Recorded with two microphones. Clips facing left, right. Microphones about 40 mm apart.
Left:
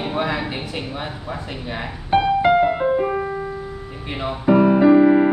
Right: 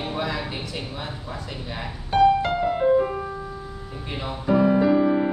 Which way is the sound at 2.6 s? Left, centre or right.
Left.